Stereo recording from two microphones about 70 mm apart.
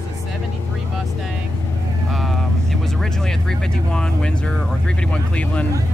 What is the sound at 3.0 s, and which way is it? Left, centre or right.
Speech, centre.